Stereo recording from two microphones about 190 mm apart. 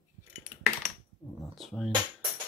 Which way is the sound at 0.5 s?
25° left (ahead or behind).